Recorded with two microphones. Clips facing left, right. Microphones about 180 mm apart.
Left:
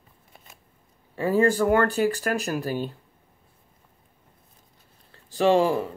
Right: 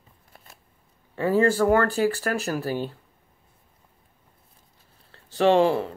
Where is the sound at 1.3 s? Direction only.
15° left (ahead or behind).